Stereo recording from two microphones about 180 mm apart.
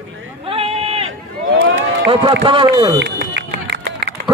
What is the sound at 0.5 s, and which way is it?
Run, 30° right (ahead or behind).